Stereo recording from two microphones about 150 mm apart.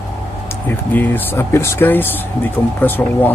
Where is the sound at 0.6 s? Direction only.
10° left (ahead or behind).